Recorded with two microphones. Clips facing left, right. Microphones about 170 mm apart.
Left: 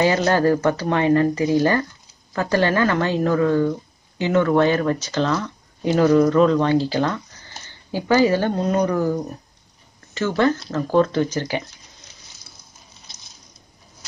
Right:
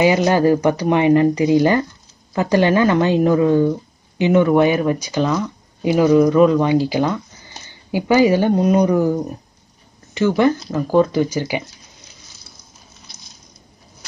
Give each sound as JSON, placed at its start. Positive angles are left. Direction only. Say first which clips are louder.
{"t": 0.0, "sound": "speech", "louder": "right 3 dB", "side_deg": -15}